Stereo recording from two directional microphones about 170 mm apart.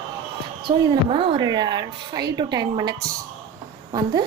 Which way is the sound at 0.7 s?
30° right (ahead or behind).